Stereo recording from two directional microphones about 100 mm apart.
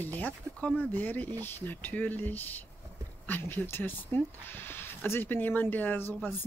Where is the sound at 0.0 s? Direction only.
15° left (ahead or behind).